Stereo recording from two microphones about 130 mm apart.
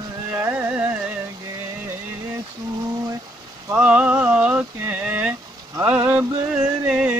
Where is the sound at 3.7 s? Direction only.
10° right (ahead or behind).